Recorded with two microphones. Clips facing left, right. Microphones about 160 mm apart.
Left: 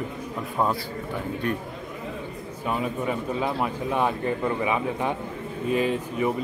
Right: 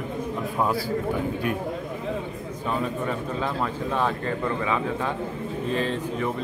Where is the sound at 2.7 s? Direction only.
10° left (ahead or behind).